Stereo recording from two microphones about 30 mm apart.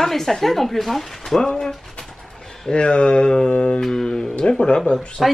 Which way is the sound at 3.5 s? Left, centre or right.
Left.